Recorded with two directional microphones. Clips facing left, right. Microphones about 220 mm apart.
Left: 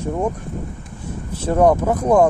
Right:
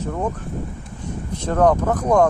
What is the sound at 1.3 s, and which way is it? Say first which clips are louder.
Speech: left 2 dB; 10° left (ahead or behind).